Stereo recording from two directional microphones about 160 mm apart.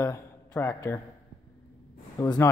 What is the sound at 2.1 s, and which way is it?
Speech, 20° left (ahead or behind).